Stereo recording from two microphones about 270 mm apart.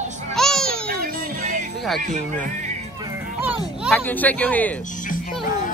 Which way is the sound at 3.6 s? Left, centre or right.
Centre.